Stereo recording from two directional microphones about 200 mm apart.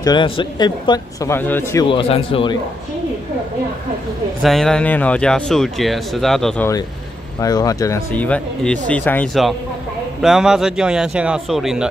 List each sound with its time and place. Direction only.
0.0 s speech: 20° left (ahead or behind)
1.9 s speech: 25° left (ahead or behind)
4.4 s speech: centre (ahead or behind)
7.3 s speech: 20° left (ahead or behind); by 11.9 s centre (ahead or behind)